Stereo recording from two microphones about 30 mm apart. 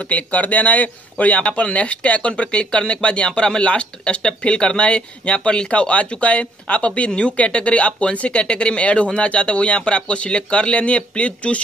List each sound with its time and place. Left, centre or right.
0.1 s speech: left
1.5 s speech: left